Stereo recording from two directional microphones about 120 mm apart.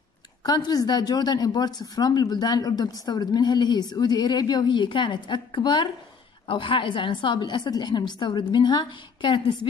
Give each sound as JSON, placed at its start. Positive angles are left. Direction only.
{"t": 0.4, "sound": "a woman's voice", "side_deg": 35}